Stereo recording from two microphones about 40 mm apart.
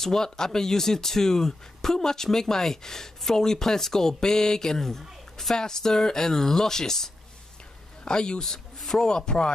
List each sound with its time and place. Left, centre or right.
0.0 s speech: centre
9.0 s speech: left